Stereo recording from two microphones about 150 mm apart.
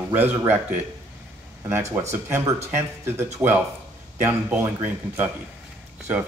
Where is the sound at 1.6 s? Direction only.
15° right (ahead or behind).